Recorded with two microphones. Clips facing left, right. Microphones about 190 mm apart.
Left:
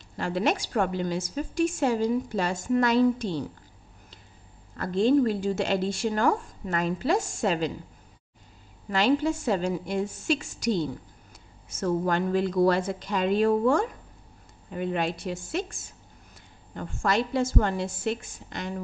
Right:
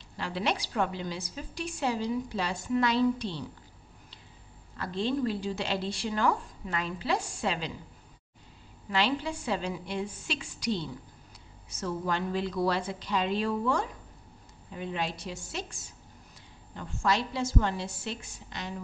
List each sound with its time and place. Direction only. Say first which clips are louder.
0.2 s a woman's voice: left 5 dB; 45° left (ahead or behind)
4.7 s a woman's voice: left 9 dB; 50° left (ahead or behind)
8.9 s a woman's voice: left 6 dB; 45° left (ahead or behind)